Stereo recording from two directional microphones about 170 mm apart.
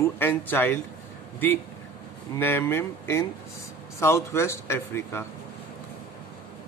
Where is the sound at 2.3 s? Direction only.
15° left (ahead or behind).